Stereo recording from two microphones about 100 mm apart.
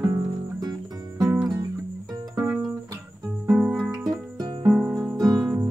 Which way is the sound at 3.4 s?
10° right (ahead or behind).